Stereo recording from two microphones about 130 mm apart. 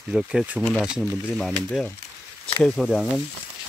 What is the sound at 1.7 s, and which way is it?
Speech, 10° left (ahead or behind).